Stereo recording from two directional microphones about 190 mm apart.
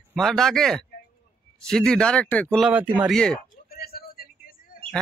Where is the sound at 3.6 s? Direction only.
55° left (ahead or behind).